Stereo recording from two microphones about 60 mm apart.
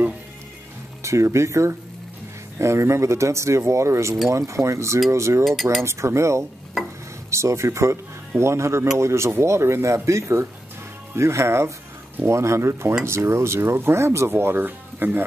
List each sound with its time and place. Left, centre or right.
1.0 s speech: right
5.4 s speech: centre
5.9 s speech: right